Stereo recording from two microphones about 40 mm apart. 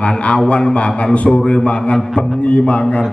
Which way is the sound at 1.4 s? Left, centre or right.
Centre.